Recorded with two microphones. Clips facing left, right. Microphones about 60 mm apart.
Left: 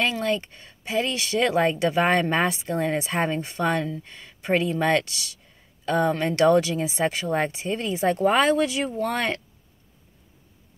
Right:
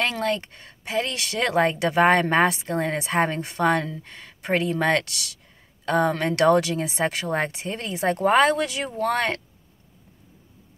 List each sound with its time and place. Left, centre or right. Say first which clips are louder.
0.0 s speech: even; right